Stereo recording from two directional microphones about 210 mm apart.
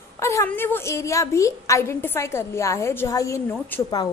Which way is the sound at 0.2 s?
15° left (ahead or behind).